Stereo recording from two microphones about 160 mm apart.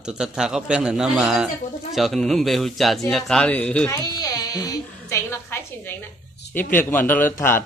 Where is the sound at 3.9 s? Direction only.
25° left (ahead or behind).